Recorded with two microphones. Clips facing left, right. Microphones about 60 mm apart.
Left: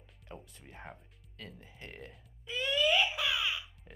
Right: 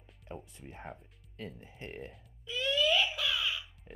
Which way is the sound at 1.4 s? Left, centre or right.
Right.